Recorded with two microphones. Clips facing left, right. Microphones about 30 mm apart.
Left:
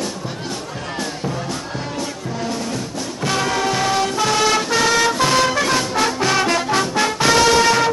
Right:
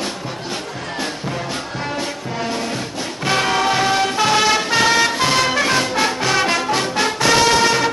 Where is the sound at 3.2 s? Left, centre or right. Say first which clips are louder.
Right 2 dB; right.